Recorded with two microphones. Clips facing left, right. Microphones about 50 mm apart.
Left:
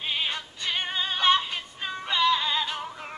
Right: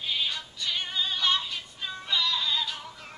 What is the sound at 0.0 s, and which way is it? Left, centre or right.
Music, left.